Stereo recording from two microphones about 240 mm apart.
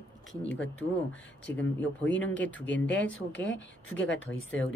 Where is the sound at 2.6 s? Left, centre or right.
Left.